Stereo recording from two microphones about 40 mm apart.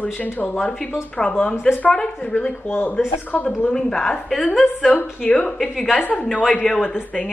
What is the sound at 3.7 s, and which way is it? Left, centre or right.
Speech, centre.